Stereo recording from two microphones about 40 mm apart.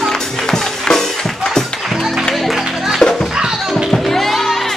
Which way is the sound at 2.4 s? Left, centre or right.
Centre.